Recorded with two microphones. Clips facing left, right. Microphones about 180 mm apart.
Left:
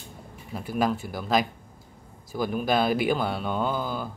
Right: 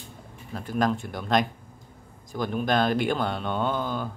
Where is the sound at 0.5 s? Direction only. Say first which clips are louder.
Even; 10° left (ahead or behind).